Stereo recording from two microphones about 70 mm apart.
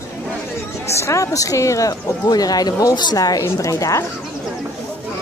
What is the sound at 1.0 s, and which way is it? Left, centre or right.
A woman's voice, left.